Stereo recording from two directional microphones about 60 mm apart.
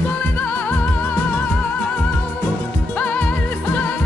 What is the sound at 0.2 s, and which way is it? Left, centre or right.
Music, left.